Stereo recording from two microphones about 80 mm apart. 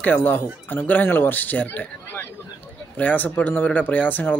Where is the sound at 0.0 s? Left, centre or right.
Left.